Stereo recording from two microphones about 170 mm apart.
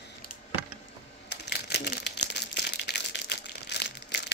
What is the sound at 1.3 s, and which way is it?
Crumpling, 80° left.